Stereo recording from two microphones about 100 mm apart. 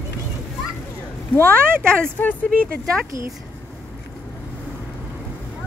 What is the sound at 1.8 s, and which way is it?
Speech, 15° left (ahead or behind).